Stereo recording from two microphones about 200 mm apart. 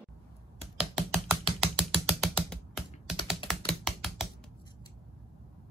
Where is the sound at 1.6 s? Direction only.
5° right (ahead or behind).